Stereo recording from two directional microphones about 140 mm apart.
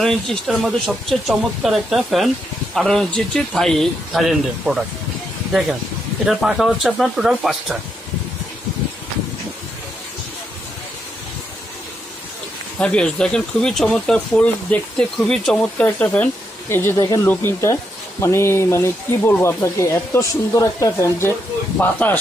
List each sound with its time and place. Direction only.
0.0 s speech: 5° left (ahead or behind)
6.2 s speech: centre (ahead or behind)
12.7 s speech: 10° left (ahead or behind)